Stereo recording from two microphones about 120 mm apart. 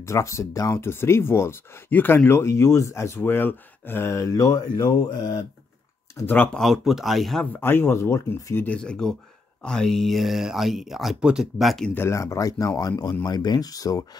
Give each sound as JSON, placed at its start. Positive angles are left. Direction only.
{"t": 0.0, "sound": "speech", "side_deg": 25}
{"t": 6.1, "sound": "speech", "side_deg": 15}
{"t": 6.6, "sound": "speech", "side_deg": 0}
{"t": 7.6, "sound": "speech", "side_deg": 20}
{"t": 8.6, "sound": "speech", "side_deg": 10}
{"t": 11.9, "sound": "speech", "side_deg": 20}